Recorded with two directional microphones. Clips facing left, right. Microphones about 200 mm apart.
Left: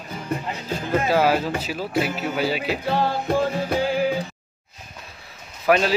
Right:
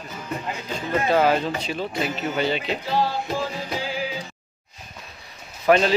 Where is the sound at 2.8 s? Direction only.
55° left (ahead or behind).